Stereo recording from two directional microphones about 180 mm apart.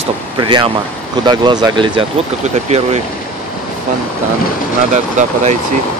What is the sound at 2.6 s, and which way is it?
Speech, 35° right (ahead or behind).